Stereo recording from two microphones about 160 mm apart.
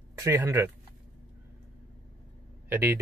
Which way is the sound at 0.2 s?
20° right (ahead or behind).